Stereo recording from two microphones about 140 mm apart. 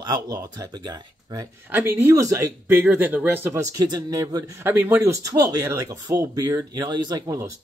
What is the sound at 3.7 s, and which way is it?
Speech, 30° right (ahead or behind).